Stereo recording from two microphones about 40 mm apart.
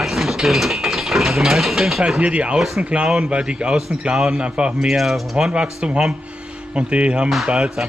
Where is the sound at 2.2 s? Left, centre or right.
Right.